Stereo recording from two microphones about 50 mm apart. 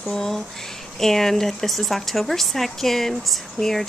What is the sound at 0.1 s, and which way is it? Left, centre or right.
Speech, centre.